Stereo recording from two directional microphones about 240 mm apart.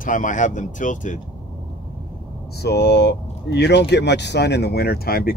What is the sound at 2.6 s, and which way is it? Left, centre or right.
Speech, left.